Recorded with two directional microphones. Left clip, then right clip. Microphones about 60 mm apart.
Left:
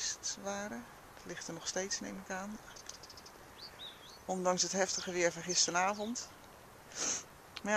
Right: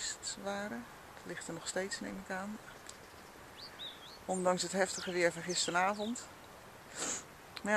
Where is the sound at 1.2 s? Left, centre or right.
Left.